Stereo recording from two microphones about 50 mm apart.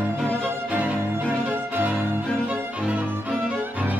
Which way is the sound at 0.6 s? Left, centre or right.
Right.